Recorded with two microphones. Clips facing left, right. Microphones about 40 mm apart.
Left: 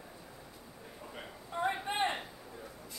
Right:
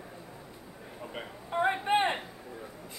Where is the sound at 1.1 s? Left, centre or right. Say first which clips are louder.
Right 7 dB; right.